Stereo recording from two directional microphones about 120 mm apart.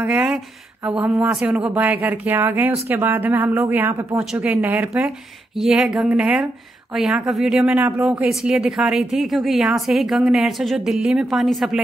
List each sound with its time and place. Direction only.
0.0 s speech: 10° right (ahead or behind)
5.6 s a woman's voice: 5° right (ahead or behind)